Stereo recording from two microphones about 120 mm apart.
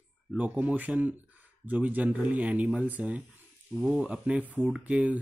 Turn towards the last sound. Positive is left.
turn(degrees=-10)  # may be behind; listen again after turning